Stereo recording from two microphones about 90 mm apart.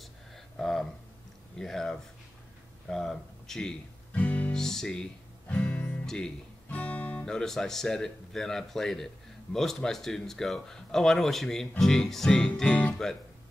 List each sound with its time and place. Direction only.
0.6 s a sound: 5° left (ahead or behind)
1.6 s speech: 5° left (ahead or behind)
4.1 s guitar: 15° left (ahead or behind)
6.0 s speech: 10° left (ahead or behind)